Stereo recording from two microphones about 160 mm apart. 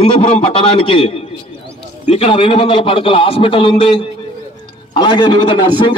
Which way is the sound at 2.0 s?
40° left (ahead or behind).